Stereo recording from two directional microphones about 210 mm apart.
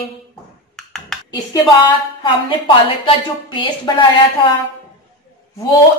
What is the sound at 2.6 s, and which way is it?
Speech, 20° left (ahead or behind).